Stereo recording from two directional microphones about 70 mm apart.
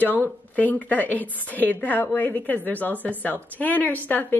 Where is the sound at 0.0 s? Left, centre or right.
Left.